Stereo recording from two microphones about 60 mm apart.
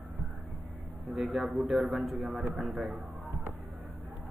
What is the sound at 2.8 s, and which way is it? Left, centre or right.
Speech, right.